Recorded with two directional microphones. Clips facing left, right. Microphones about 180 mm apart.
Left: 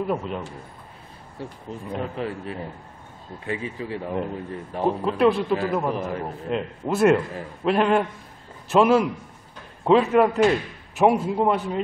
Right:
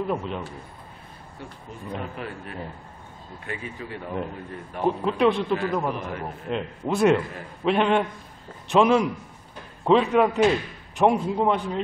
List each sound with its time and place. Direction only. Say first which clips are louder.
0.0 s a man's voice: left 1 dB; 5° left (ahead or behind)
1.4 s a man's voice: left 5 dB; 35° left (ahead or behind)
4.8 s a man's voice: left 1 dB; 5° left (ahead or behind)